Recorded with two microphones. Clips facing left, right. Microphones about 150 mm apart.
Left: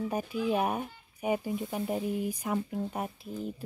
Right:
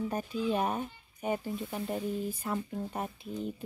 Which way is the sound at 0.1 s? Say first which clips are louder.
Left 2 dB; 10° left (ahead or behind).